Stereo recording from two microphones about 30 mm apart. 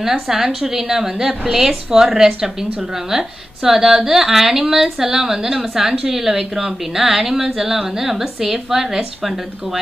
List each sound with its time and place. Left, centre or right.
0.0 s a woman's voice: centre